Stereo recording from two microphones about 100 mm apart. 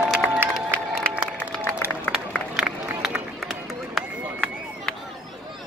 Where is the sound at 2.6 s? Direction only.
5° right (ahead or behind).